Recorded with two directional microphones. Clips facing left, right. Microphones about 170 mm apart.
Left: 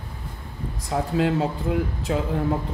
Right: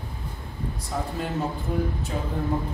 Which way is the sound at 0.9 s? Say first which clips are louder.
Left 5 dB; 65° left (ahead or behind).